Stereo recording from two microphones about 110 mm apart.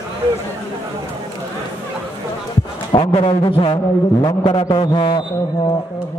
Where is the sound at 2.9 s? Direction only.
55° left (ahead or behind).